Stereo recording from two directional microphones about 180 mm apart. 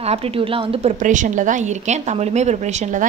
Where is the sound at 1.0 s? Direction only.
45° right (ahead or behind).